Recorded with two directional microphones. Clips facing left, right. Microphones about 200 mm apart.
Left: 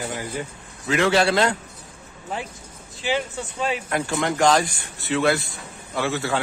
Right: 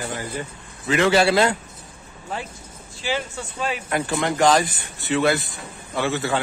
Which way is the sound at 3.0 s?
20° left (ahead or behind).